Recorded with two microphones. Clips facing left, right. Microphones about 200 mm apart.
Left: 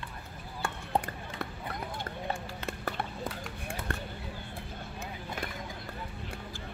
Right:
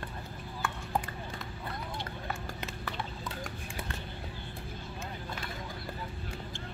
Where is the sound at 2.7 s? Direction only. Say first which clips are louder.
Left 8 dB; 55° left (ahead or behind).